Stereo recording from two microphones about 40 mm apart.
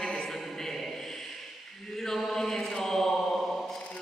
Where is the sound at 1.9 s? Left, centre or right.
Centre.